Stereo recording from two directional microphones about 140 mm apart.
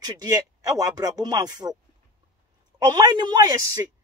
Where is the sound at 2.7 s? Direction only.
30° right (ahead or behind).